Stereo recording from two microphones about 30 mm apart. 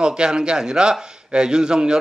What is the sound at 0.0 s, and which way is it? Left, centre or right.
A man's voice, right.